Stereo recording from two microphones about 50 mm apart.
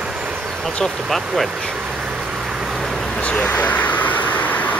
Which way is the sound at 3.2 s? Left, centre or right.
Left.